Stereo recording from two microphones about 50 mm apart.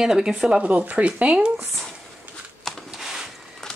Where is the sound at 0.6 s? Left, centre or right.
Right.